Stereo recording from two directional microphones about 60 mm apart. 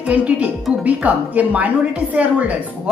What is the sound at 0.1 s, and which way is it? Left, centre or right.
A woman's voice, right.